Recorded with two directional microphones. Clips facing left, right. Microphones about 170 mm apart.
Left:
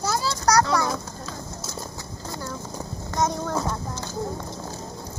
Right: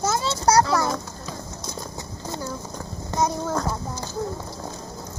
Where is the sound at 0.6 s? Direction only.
Centre (ahead or behind).